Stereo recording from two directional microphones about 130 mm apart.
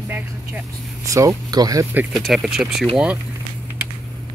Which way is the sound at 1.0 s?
25° right (ahead or behind).